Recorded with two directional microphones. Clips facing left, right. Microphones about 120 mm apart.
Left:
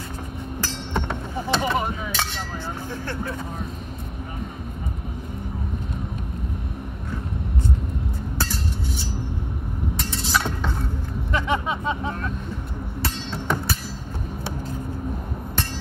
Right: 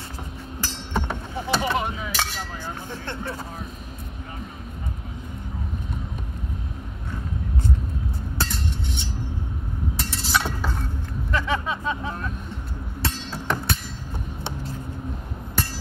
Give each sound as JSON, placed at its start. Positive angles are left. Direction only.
{"t": 0.9, "sound": "rowboat", "side_deg": -5}
{"t": 8.4, "sound": "cutlery", "side_deg": 5}
{"t": 9.9, "sound": "chink", "side_deg": 0}
{"t": 11.3, "sound": "a sound", "side_deg": 20}
{"t": 13.0, "sound": "music", "side_deg": 0}